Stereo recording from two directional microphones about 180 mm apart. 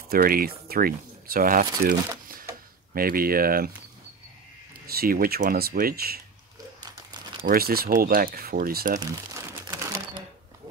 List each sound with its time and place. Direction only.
0.1 s speech: 55° right (ahead or behind)
2.9 s speech: 55° right (ahead or behind)
4.7 s speech: 55° right (ahead or behind)
7.4 s speech: 55° right (ahead or behind)
9.0 s crumpling: 15° right (ahead or behind)